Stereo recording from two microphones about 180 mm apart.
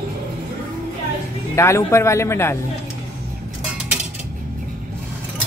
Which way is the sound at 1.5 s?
15° left (ahead or behind).